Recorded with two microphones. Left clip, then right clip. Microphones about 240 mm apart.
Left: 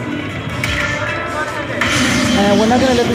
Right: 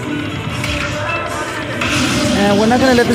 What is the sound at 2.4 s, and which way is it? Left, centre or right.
Speech, centre.